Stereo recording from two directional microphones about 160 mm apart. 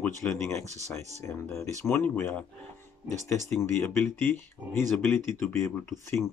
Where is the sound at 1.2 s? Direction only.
15° left (ahead or behind).